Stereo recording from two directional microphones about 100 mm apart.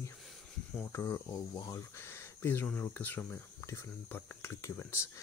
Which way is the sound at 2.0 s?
25° left (ahead or behind).